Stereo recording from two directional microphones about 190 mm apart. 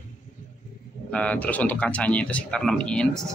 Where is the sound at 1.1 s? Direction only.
5° left (ahead or behind).